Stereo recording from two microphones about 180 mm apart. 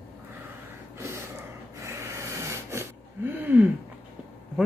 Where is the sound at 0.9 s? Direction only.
15° right (ahead or behind).